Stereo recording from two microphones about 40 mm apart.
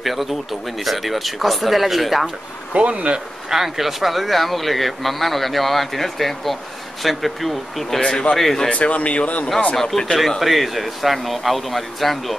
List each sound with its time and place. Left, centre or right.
0.0 s speech: centre
2.7 s speech: right
3.4 s speech: centre
8.0 s speech: left
8.4 s speech: centre
8.6 s speech: left
9.8 s speech: centre